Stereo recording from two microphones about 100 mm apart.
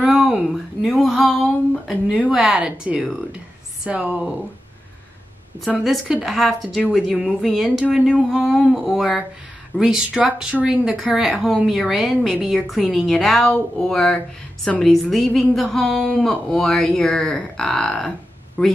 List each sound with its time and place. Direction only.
0.0 s a woman's voice: 5° right (ahead or behind)
5.9 s a woman's voice: centre (ahead or behind); by 18.7 s 15° left (ahead or behind)